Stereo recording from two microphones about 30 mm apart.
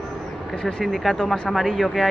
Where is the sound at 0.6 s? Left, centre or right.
Left.